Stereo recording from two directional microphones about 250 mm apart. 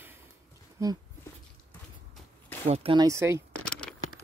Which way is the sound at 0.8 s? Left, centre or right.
Centre.